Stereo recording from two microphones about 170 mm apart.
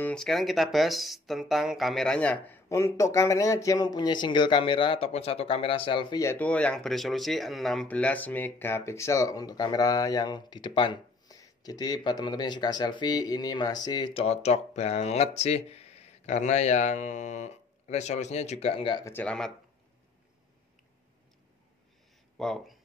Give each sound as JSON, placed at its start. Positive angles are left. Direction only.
{"t": 0.0, "sound": "speech", "side_deg": 5}
{"t": 6.2, "sound": "speech", "side_deg": 10}
{"t": 19.0, "sound": "speech", "side_deg": 10}
{"t": 22.4, "sound": "speech", "side_deg": 0}